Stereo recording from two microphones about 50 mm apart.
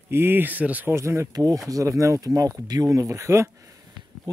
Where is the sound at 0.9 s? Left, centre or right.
Right.